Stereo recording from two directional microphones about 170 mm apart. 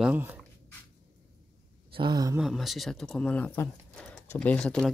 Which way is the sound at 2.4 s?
Centre (ahead or behind).